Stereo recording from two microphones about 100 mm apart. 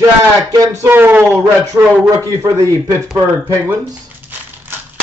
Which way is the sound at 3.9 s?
20° right (ahead or behind).